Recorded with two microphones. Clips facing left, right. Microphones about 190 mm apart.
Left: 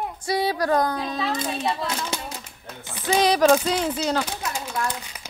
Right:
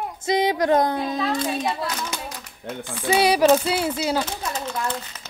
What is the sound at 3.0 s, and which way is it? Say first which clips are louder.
A woman's voice: right 1 dB; 10° right (ahead or behind).